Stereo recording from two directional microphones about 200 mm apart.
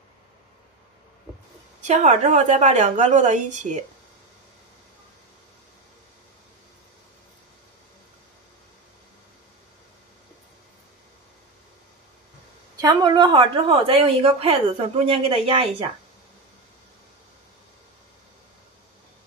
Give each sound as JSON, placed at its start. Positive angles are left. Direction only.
{"t": 1.8, "sound": "a woman's voice", "side_deg": -35}
{"t": 12.7, "sound": "a woman's voice", "side_deg": -20}